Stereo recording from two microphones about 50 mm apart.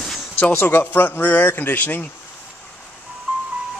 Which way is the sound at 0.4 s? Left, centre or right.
Left.